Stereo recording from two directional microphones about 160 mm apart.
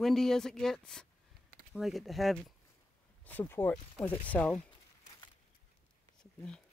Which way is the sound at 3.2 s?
10° left (ahead or behind).